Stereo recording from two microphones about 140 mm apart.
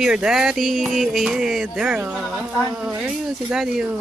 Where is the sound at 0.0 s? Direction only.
5° right (ahead or behind).